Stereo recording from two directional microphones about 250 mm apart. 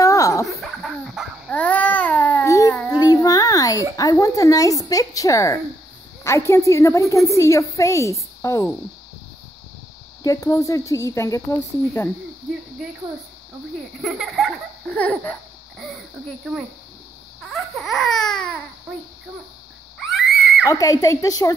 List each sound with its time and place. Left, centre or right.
0.0 s a sound: centre
0.5 s babbling: centre
3.9 s speech: centre
10.2 s speech: centre
14.0 s laughter: centre
17.4 s laughter: centre
20.1 s a sound: centre
20.6 s speech: centre